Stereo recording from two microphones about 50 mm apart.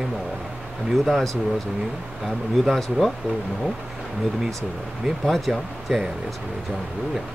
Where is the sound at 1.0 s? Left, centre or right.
Centre.